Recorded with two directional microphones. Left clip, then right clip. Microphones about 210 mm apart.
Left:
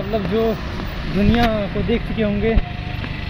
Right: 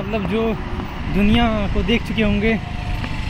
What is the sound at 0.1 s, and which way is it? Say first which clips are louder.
Speech: left 2 dB; centre (ahead or behind).